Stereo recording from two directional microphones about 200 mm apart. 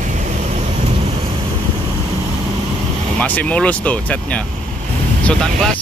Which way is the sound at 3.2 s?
5° left (ahead or behind).